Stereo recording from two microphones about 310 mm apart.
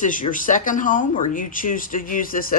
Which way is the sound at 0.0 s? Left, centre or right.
Left.